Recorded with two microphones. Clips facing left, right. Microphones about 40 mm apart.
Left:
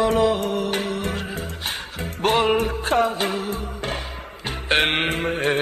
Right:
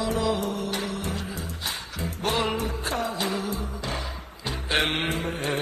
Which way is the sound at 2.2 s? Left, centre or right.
Left.